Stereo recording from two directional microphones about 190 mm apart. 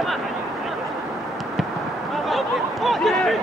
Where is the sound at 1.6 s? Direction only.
Centre (ahead or behind).